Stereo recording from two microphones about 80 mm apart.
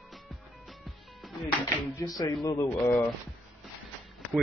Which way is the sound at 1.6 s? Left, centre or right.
Left.